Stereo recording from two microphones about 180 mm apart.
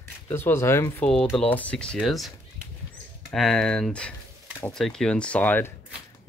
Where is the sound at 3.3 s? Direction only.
Centre (ahead or behind).